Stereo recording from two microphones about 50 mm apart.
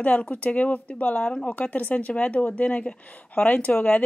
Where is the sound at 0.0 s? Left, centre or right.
Left.